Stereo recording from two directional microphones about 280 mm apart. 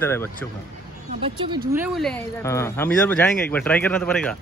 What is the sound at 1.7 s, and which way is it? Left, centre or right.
Speech, centre.